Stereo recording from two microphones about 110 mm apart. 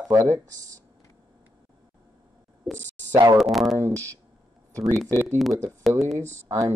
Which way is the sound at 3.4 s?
Centre (ahead or behind).